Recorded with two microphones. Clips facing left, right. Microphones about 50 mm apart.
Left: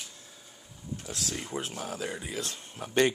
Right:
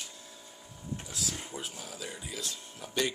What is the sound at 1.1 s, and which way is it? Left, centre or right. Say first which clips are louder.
Speech: left 7 dB; left.